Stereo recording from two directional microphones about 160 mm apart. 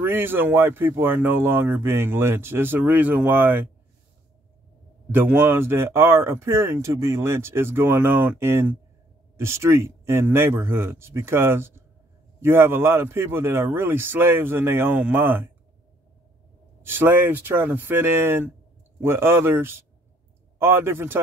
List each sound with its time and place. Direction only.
0.0 s speech: 15° right (ahead or behind)
5.1 s speech: 15° right (ahead or behind)
16.8 s speech: 15° right (ahead or behind)